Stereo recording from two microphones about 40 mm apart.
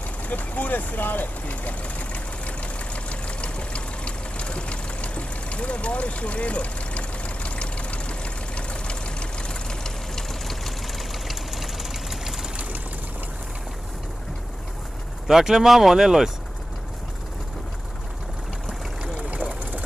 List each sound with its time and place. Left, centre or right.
0.3 s vehicle: left; by 10.2 s centre
10.4 s vehicle: centre
15.2 s speech: centre